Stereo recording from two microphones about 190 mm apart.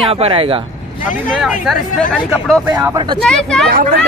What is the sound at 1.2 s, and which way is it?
Speech, centre (ahead or behind).